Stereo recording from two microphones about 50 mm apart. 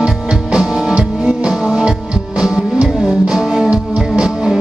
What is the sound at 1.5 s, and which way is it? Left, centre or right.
Music, centre.